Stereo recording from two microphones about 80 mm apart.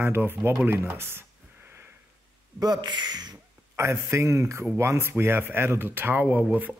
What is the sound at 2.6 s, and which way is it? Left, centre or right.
Speech, right.